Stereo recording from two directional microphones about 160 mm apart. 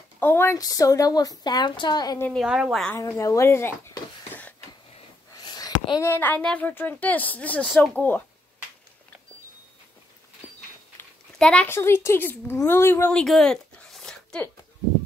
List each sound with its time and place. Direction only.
0.2 s a woman's voice: 15° left (ahead or behind)
2.3 s a woman's voice: 5° right (ahead or behind)
3.0 s speech: 20° left (ahead or behind)
4.3 s a sound: 10° left (ahead or behind)
5.3 s a woman's voice: 25° left (ahead or behind); by 8.0 s centre (ahead or behind)
11.0 s speech: 5° left (ahead or behind)